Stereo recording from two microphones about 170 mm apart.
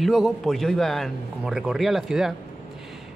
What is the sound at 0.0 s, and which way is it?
Speech, centre (ahead or behind).